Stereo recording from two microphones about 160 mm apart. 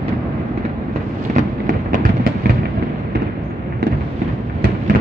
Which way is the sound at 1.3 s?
55° right (ahead or behind).